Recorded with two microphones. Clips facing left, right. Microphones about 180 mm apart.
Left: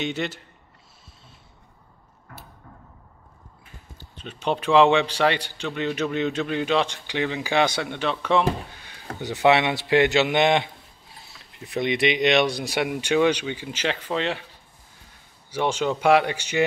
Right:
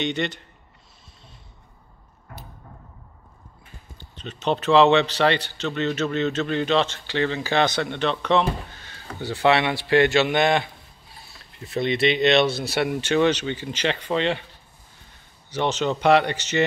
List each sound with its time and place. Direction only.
0.0 s speech: 5° left (ahead or behind)
4.0 s a man's voice: 10° left (ahead or behind)
15.5 s a man's voice: 10° left (ahead or behind)